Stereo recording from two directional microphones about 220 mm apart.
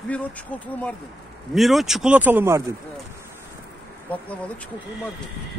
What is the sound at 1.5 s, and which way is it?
Speech, centre (ahead or behind).